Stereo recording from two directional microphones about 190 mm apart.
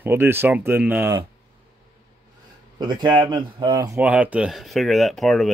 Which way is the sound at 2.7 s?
20° right (ahead or behind).